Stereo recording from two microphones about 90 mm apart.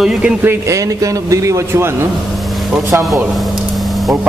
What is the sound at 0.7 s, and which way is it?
Speech, 40° right (ahead or behind).